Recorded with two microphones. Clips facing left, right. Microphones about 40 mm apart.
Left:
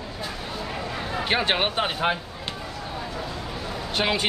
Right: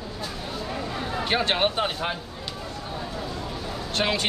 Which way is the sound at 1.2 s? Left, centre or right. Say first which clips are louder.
Even; centre.